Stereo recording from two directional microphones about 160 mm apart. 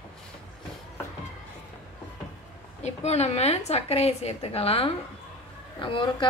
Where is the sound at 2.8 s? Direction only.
40° left (ahead or behind).